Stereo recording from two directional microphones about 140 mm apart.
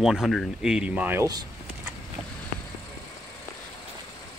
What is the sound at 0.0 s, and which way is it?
Speech, centre (ahead or behind).